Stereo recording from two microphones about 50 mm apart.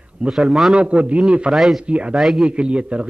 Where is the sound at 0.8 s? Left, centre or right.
Right.